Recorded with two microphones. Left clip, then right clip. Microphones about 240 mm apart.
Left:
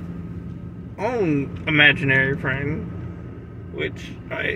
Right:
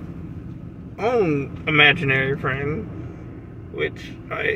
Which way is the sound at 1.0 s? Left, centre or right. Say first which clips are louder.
Right 2 dB; centre.